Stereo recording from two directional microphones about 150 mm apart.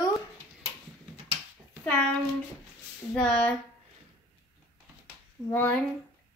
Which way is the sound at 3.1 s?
5° left (ahead or behind).